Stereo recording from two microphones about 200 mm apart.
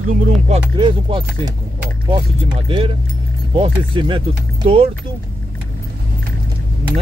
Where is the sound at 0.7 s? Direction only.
25° right (ahead or behind).